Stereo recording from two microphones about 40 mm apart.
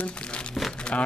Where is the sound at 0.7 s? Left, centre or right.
Left.